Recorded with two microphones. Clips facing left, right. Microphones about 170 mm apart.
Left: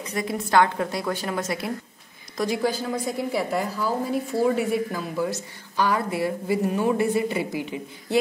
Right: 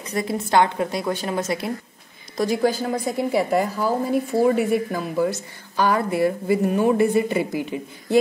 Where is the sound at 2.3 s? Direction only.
45° right (ahead or behind).